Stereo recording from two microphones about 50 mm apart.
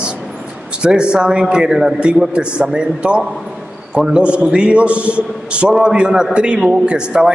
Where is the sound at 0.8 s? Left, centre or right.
Centre.